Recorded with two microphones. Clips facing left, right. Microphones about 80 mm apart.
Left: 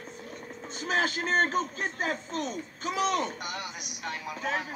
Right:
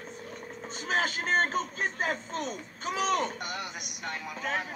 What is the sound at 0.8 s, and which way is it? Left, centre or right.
A man's voice, right.